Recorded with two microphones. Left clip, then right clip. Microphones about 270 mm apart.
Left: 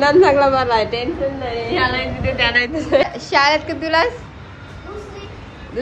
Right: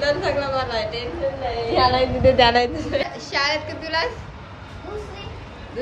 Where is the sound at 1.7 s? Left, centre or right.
Right.